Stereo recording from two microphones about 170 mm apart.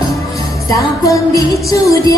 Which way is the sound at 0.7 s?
20° left (ahead or behind).